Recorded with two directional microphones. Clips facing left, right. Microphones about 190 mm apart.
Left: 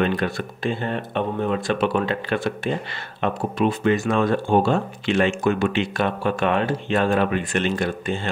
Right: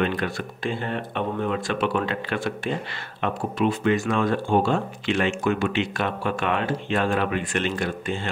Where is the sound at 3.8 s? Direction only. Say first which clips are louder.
Left 3 dB; 35° left (ahead or behind).